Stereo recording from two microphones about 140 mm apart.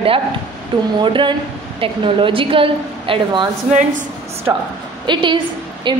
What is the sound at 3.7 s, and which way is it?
Speech, 65° right (ahead or behind).